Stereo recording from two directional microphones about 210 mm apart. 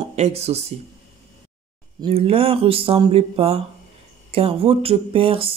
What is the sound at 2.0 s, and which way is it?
Speech, 25° right (ahead or behind).